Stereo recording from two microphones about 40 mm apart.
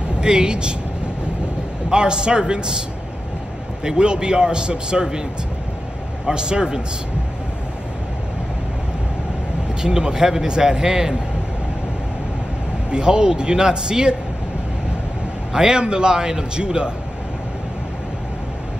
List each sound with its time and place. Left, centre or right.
0.2 s a man's voice: centre
1.9 s a man's voice: right
3.8 s a man's voice: right
6.2 s a man's voice: right
9.8 s speech: centre
12.9 s a man's voice: right
15.5 s a man's voice: centre